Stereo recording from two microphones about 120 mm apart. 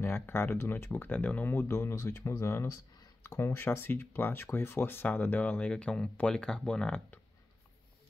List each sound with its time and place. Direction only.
0.0 s speech: 20° left (ahead or behind)